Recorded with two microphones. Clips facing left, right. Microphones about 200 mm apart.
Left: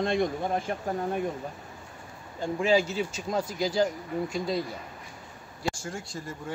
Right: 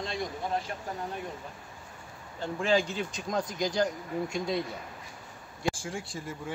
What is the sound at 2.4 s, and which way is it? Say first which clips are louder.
Speech: left 3 dB; 10° left (ahead or behind).